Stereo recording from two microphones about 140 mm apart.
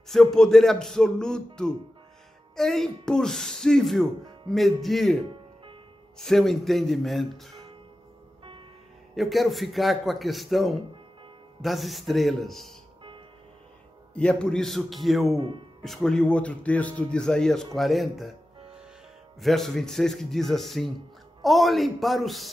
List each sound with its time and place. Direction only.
0.1 s a man's voice: 5° left (ahead or behind)
9.1 s a man's voice: centre (ahead or behind)
14.1 s a man's voice: 5° left (ahead or behind)
15.3 s speech: 40° right (ahead or behind)
15.8 s a man's voice: 5° left (ahead or behind)
19.4 s a man's voice: centre (ahead or behind)